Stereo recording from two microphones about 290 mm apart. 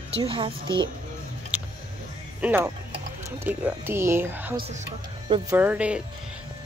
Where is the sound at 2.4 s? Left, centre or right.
Centre.